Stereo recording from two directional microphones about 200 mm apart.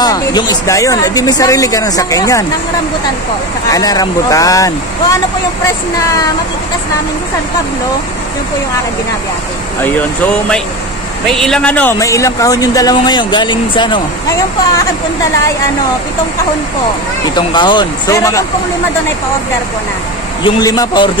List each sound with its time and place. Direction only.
0.0 s speech: 20° left (ahead or behind)
3.7 s speech: 20° left (ahead or behind)
9.8 s speech: 10° left (ahead or behind)
17.4 s speech: 20° left (ahead or behind)
20.4 s speech: 20° left (ahead or behind)